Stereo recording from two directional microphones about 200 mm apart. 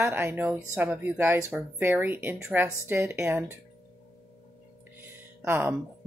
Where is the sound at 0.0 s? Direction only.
10° right (ahead or behind).